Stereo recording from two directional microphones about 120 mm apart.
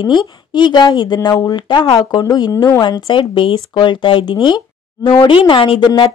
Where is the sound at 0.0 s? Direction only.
40° left (ahead or behind).